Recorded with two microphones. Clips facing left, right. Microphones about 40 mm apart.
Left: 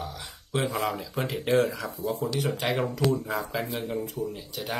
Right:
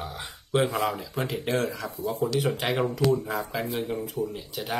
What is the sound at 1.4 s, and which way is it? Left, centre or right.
Speech, centre.